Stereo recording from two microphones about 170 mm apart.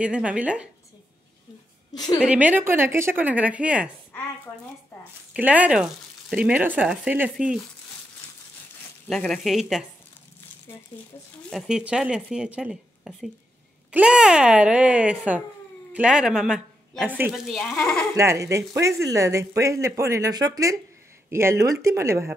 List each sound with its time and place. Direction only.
0.0 s speech: 5° right (ahead or behind)
2.2 s speech: 10° right (ahead or behind)
5.3 s speech: 10° right (ahead or behind)
9.1 s a woman's voice: centre (ahead or behind)
11.5 s a woman's voice: 5° right (ahead or behind)
18.1 s speech: 15° right (ahead or behind)